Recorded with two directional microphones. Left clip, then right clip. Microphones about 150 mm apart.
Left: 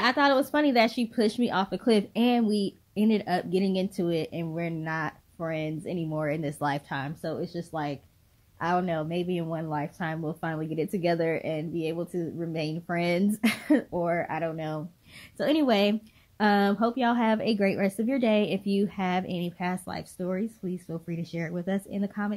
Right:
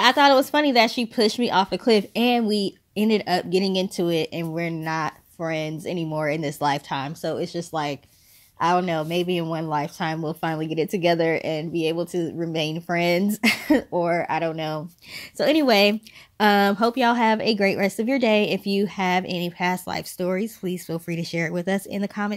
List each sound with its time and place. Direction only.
0.0 s speech: 45° right (ahead or behind)